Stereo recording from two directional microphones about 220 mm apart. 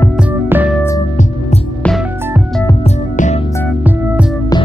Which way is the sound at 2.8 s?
30° left (ahead or behind).